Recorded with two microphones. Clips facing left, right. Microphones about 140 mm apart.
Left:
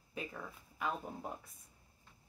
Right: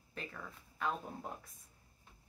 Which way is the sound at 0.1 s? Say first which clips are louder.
Left 3 dB; 10° left (ahead or behind).